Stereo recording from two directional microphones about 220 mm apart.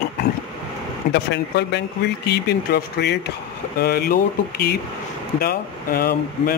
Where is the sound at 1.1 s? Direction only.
50° left (ahead or behind).